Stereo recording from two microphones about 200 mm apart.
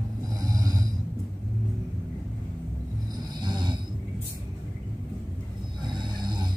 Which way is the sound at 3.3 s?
20° right (ahead or behind).